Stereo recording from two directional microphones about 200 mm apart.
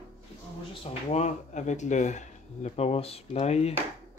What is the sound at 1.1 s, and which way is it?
Speech, 35° left (ahead or behind).